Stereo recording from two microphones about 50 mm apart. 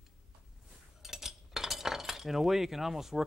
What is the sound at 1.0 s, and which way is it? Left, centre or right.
Cutlery, centre.